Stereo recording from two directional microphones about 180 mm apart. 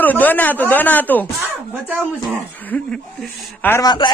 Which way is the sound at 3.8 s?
25° left (ahead or behind).